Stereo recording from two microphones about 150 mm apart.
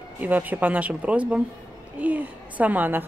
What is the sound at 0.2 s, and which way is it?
A woman's voice, 10° right (ahead or behind).